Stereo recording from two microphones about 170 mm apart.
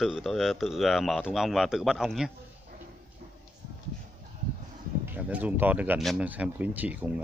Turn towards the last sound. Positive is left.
turn(degrees=-10)  # may be behind; listen again after turning